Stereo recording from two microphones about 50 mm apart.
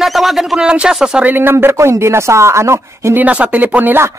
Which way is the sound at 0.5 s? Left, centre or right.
Centre.